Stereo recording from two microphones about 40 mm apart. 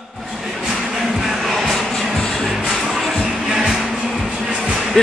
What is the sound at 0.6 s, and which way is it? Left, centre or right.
Music, centre.